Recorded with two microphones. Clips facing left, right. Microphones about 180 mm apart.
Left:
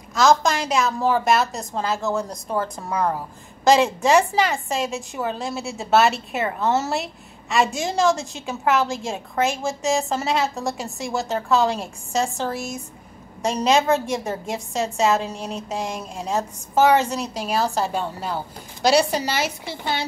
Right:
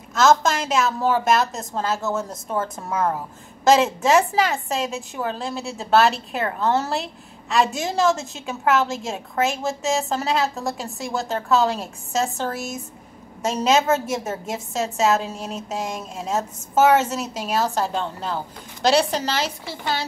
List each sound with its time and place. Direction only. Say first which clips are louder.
0.1 s a woman's voice: even; centre (ahead or behind)
19.6 s speech: even; 20° left (ahead or behind)